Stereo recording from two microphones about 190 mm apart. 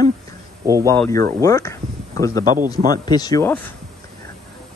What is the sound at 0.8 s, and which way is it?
Speech, 15° left (ahead or behind).